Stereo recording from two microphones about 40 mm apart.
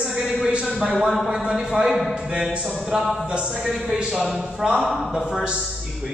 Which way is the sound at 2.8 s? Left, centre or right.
Centre.